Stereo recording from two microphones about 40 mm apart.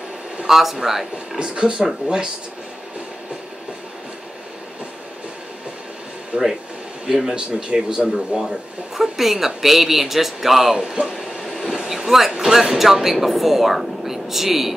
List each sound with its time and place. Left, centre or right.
0.5 s speech: centre
1.4 s speech: right
6.3 s speech: right
7.1 s speech: centre
7.3 s speech: right
8.4 s speech: centre
11.1 s train: centre
12.1 s speech: centre